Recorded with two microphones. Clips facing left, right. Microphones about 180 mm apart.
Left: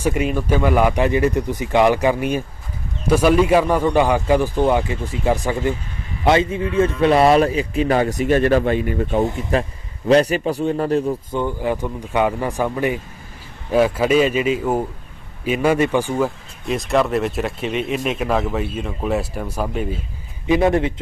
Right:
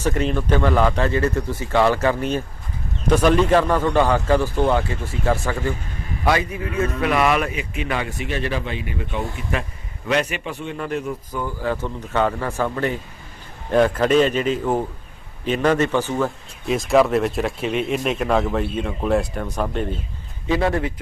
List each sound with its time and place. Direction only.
0.0 s a man's voice: 10° left (ahead or behind)
16.6 s speech: centre (ahead or behind)
20.4 s a man's voice: 20° left (ahead or behind)